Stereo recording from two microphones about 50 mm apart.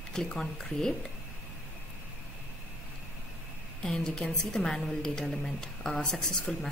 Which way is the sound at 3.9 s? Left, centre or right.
Centre.